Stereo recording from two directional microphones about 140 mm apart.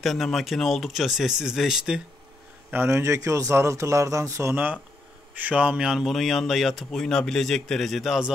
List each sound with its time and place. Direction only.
0.0 s a man's voice: centre (ahead or behind)
2.7 s a man's voice: 15° right (ahead or behind); by 8.3 s centre (ahead or behind)